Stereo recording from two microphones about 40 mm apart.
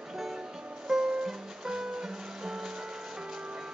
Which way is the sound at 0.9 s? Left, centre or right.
Centre.